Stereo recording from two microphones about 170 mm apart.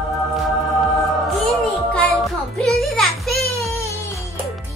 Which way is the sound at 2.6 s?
Centre (ahead or behind).